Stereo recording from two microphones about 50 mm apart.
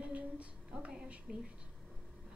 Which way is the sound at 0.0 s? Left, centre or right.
Right.